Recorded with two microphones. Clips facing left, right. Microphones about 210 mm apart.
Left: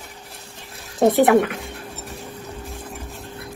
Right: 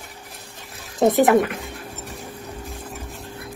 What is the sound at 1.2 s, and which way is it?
Speech, centre (ahead or behind).